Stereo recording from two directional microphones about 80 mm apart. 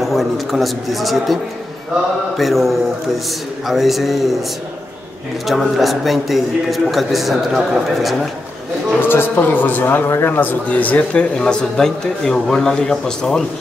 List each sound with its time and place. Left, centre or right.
0.0 s a man's voice: centre
5.5 s a man's voice: centre
9.0 s speech: left; by 13.4 s centre